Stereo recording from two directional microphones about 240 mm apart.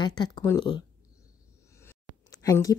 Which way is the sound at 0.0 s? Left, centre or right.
Centre.